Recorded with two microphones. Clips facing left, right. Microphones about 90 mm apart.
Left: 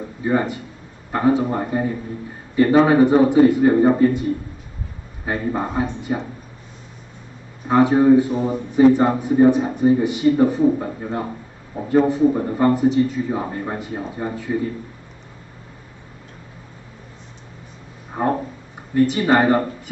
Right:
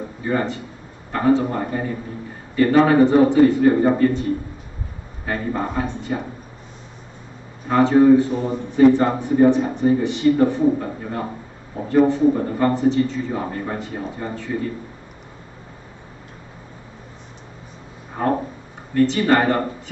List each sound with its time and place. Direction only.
0.2 s speech: 15° left (ahead or behind)
7.6 s speech: 15° left (ahead or behind)
11.7 s a man's voice: 20° left (ahead or behind)
18.2 s speech: 15° left (ahead or behind)